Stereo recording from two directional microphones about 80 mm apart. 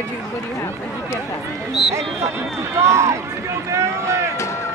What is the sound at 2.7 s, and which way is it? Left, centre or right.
Speech, right.